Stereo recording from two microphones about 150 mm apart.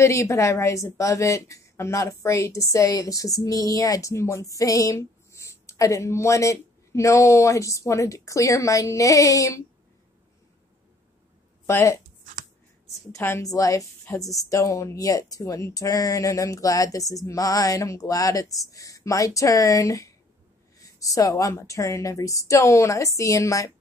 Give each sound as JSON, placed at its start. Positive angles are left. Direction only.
{"t": 0.0, "sound": "a woman's voice", "side_deg": 20}
{"t": 11.6, "sound": "speech", "side_deg": 20}
{"t": 13.1, "sound": "a woman's voice", "side_deg": 15}